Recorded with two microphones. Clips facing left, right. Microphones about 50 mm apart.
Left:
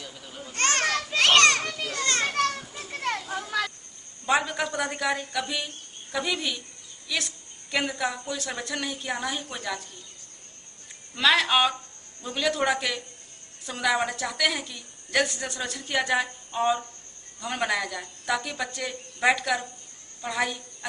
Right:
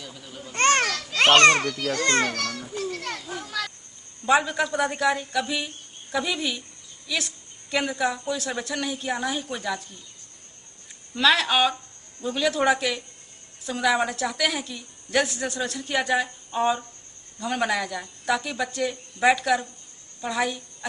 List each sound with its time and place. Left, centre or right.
0.0 s a sound: centre
0.5 s children playing: right
0.8 s children playing: left
1.1 s children playing: right
1.9 s a child's voice: right
2.3 s children playing: left
4.3 s a woman's voice: centre
11.1 s a woman's voice: centre